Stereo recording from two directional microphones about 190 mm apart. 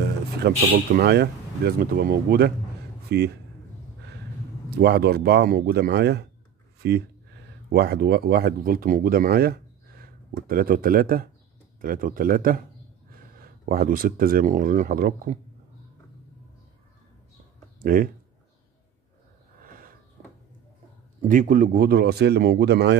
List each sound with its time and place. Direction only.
0.4 s speech: 55° right (ahead or behind)
4.6 s speech: 60° right (ahead or behind)
17.7 s speech: 50° right (ahead or behind)
19.6 s a sound: 50° right (ahead or behind)
21.3 s speech: 45° right (ahead or behind); by 22.9 s 60° right (ahead or behind)